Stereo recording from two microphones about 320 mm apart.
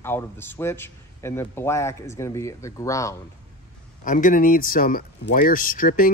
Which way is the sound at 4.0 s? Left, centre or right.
Left.